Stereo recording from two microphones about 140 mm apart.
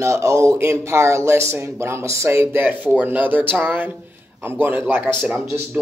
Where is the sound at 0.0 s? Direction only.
20° right (ahead or behind).